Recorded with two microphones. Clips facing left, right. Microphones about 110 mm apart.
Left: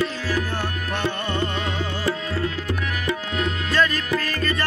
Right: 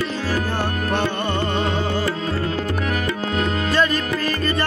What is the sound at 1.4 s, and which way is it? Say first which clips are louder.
Music: right 4 dB; 30° right (ahead or behind).